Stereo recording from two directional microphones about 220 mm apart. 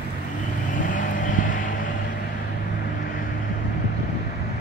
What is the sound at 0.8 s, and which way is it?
Vehicle, 35° left (ahead or behind).